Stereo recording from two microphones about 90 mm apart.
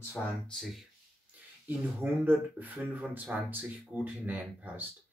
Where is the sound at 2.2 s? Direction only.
20° right (ahead or behind).